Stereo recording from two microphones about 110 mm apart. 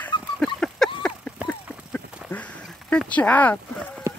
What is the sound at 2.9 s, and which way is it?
Speech, 15° left (ahead or behind).